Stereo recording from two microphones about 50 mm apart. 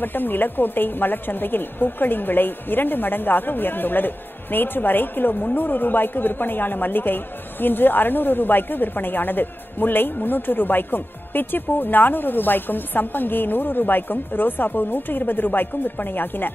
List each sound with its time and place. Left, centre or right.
0.0 s a woman's voice: left